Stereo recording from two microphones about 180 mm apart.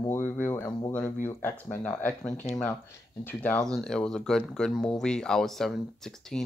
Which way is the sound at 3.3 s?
5° left (ahead or behind).